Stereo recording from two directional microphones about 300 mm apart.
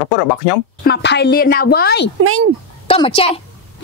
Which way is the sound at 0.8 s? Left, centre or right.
Left.